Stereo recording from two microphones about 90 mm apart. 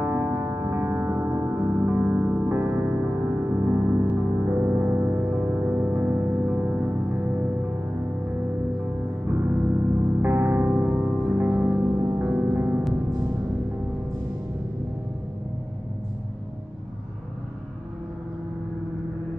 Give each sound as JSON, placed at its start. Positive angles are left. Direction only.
{"t": 0.0, "sound": "music", "side_deg": -20}
{"t": 9.2, "sound": "music", "side_deg": -25}